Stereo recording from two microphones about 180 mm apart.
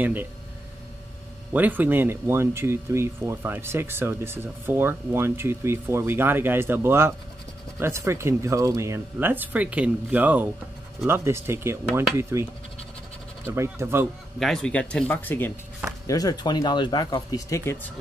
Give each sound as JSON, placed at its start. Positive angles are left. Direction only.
{"t": 0.0, "sound": "speech", "side_deg": -10}
{"t": 1.5, "sound": "speech", "side_deg": -10}
{"t": 13.5, "sound": "speech", "side_deg": -15}
{"t": 14.4, "sound": "speech", "side_deg": 5}
{"t": 16.1, "sound": "speech", "side_deg": 20}